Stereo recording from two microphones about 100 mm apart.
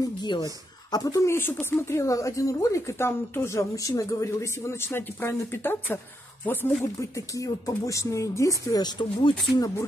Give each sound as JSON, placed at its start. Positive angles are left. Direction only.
{"t": 0.2, "sound": "speech", "side_deg": 45}
{"t": 0.9, "sound": "speech", "side_deg": 35}
{"t": 7.0, "sound": "speech", "side_deg": 35}